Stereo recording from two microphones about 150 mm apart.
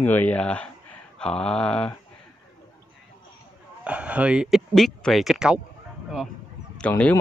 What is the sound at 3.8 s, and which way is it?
Speech, 10° right (ahead or behind).